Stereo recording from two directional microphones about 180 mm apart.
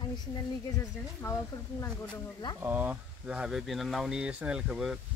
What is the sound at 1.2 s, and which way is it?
Speech, 15° left (ahead or behind).